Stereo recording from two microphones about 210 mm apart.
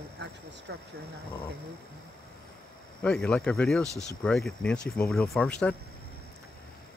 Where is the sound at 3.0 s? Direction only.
5° left (ahead or behind).